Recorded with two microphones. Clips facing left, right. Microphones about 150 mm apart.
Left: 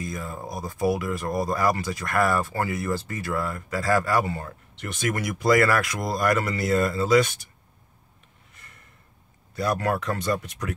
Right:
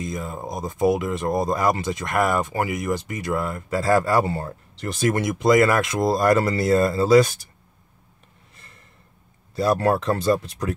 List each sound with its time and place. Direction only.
0.0 s speech: 20° right (ahead or behind)
9.6 s speech: 30° right (ahead or behind)